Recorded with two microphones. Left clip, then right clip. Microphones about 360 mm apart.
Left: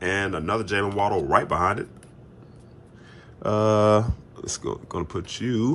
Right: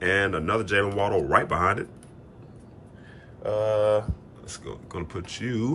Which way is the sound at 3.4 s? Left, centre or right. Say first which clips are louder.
Left 3 dB; left.